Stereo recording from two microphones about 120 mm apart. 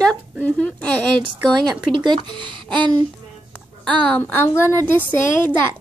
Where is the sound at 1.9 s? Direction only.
40° right (ahead or behind).